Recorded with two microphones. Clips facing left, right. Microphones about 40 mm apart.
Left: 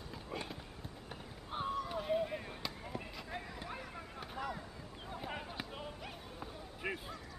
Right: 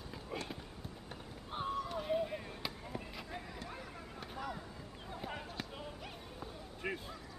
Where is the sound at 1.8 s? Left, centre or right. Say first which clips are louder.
Even; centre.